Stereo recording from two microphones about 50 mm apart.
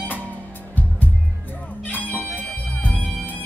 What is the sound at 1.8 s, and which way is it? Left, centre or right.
Music, left.